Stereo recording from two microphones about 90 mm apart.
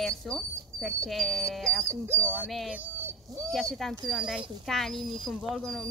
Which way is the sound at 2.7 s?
20° right (ahead or behind).